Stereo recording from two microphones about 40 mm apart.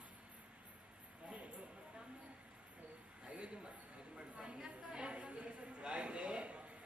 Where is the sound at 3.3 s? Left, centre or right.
Right.